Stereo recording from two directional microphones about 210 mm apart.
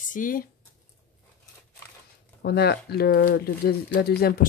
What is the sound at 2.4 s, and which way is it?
Speech, 50° left (ahead or behind).